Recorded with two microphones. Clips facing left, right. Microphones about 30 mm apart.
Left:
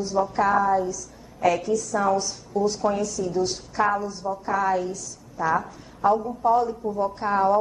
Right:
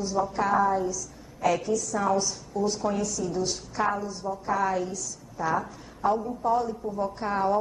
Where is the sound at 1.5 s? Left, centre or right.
Centre.